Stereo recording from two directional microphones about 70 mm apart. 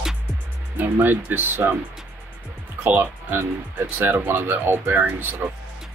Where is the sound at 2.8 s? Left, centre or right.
Right.